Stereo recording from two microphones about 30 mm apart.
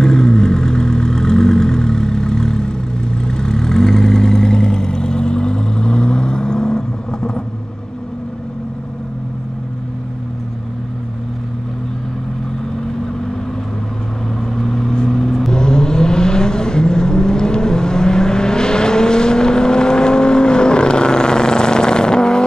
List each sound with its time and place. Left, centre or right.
0.0 s vehicle: left
14.4 s vehicle: centre
15.5 s vehicle: left